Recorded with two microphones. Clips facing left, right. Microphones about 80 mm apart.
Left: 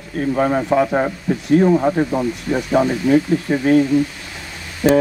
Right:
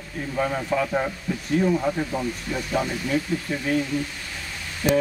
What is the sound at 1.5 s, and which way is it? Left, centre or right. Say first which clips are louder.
Speech: left 8 dB; left.